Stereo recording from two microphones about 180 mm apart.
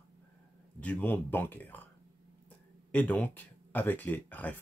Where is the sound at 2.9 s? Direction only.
10° left (ahead or behind).